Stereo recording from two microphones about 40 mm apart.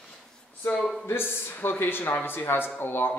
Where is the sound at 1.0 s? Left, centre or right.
Left.